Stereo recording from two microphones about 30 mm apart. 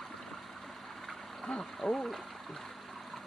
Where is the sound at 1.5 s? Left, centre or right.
Left.